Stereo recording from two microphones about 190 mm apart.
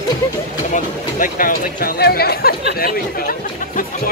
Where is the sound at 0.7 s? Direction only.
45° left (ahead or behind).